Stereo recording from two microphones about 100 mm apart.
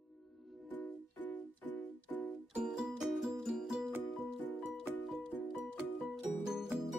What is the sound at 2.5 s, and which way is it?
Music, 5° right (ahead or behind).